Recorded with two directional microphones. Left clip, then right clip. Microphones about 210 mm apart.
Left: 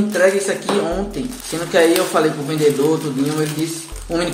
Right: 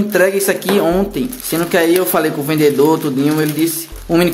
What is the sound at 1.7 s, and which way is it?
Speech, 60° right (ahead or behind).